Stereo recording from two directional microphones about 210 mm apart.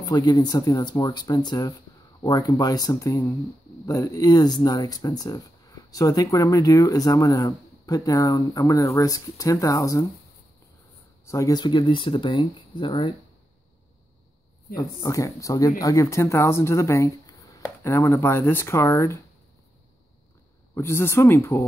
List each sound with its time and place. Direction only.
0.0 s speech: 20° left (ahead or behind)
11.2 s speech: 15° left (ahead or behind)
14.8 s speech: 15° left (ahead or behind)
20.7 s speech: 10° left (ahead or behind)